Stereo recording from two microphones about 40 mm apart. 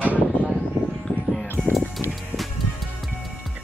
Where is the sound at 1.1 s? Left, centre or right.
Left.